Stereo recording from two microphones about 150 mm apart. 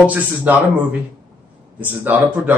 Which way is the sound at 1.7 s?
10° right (ahead or behind).